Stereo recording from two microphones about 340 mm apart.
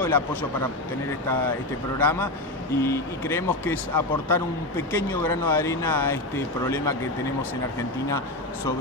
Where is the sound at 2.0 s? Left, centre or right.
Centre.